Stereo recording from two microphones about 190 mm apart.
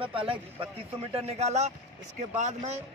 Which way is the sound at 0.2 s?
30° right (ahead or behind).